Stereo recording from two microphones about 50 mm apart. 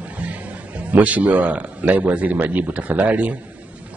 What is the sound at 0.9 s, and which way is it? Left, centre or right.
A man's voice, right.